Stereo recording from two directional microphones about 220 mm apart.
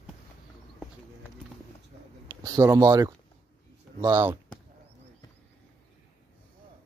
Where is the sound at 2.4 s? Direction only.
15° right (ahead or behind).